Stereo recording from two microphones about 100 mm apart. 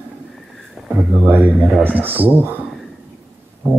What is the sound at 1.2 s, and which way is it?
Speech, 20° right (ahead or behind).